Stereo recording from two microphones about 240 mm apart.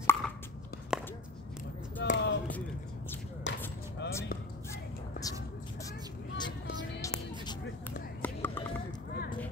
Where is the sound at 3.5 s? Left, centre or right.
Left.